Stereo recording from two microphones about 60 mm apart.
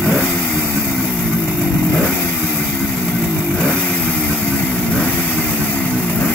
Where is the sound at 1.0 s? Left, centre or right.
Centre.